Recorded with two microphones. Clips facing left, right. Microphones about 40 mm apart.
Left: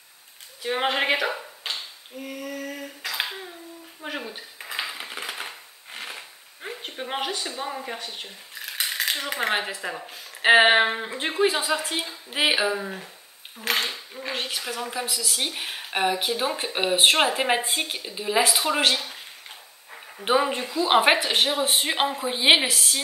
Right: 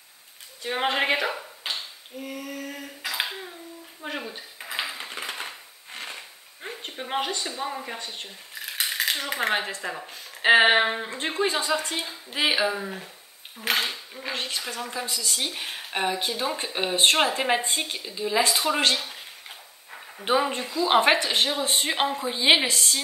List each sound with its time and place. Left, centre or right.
0.6 s a sound: centre
4.0 s dishes: centre
9.5 s speech: centre
22.6 s speech: centre